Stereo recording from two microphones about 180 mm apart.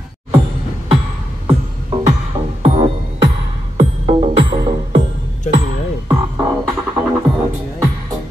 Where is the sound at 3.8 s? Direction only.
35° right (ahead or behind).